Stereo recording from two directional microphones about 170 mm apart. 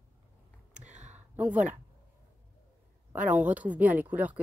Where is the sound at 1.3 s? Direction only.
10° right (ahead or behind).